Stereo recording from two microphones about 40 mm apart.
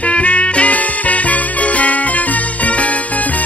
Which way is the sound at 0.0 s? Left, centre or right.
Left.